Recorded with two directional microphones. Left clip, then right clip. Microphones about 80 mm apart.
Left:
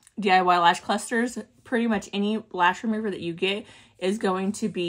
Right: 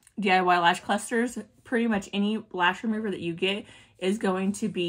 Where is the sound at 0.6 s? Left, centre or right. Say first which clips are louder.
Left 2 dB; left.